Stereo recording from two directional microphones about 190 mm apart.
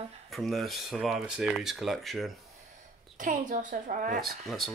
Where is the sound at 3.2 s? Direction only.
45° right (ahead or behind).